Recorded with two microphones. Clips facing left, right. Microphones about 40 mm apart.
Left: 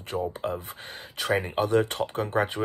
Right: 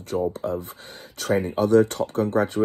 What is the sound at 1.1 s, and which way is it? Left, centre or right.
Speech, left.